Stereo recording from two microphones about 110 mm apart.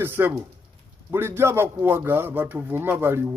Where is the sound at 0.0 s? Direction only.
20° right (ahead or behind).